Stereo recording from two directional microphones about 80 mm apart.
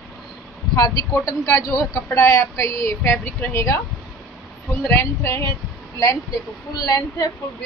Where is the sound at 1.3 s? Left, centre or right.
Left.